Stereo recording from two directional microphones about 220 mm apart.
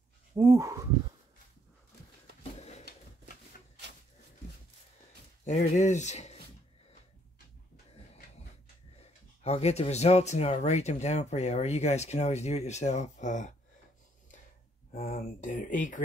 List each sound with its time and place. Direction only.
0.4 s speech: 15° right (ahead or behind)
5.4 s speech: 30° left (ahead or behind)
9.0 s speech: 30° left (ahead or behind)
15.0 s speech: 40° left (ahead or behind)